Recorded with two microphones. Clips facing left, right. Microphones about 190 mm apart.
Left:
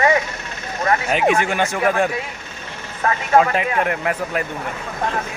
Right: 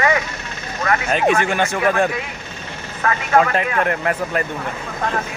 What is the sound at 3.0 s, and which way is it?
Speech, 30° left (ahead or behind).